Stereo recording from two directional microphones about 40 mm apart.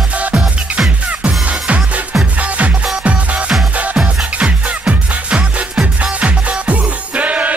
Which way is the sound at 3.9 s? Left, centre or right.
Right.